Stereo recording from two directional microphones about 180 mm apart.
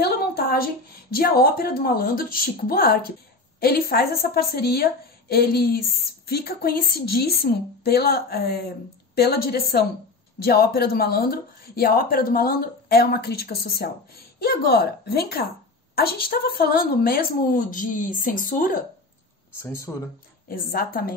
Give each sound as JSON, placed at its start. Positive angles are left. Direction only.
{"t": 0.0, "sound": "a sound", "side_deg": 60}
{"t": 1.1, "sound": "a woman's voice", "side_deg": 60}
{"t": 19.6, "sound": "speech", "side_deg": 15}
{"t": 20.4, "sound": "speech", "side_deg": 55}